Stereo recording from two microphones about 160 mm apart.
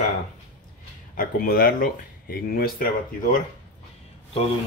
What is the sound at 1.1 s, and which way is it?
Speech, 60° left (ahead or behind).